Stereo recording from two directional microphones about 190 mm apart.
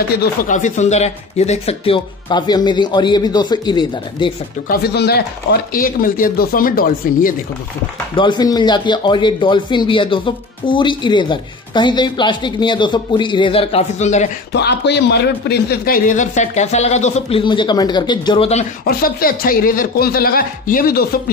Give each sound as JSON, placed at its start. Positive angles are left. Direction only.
{"t": 0.1, "sound": "a man's voice", "side_deg": 50}
{"t": 4.6, "sound": "speech", "side_deg": 60}
{"t": 8.2, "sound": "a man's voice", "side_deg": 20}
{"t": 14.5, "sound": "speech", "side_deg": 60}
{"t": 18.9, "sound": "speech", "side_deg": 50}